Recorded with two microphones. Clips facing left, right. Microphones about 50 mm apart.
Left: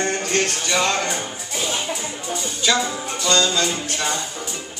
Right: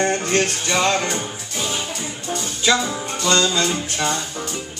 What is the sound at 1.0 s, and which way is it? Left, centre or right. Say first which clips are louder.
Music: right 1 dB; centre.